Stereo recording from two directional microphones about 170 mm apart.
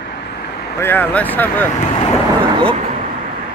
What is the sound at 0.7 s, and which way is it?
Speech, 10° left (ahead or behind).